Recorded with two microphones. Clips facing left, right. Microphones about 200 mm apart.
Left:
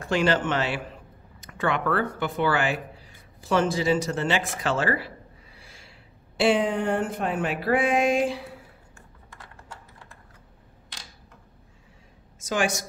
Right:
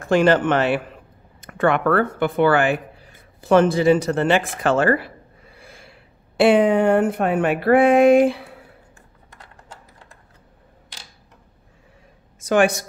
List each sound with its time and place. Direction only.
0.0 s speech: 50° right (ahead or behind)
12.4 s speech: 60° right (ahead or behind)